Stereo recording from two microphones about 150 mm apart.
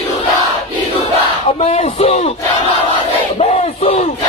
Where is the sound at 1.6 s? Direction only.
45° left (ahead or behind).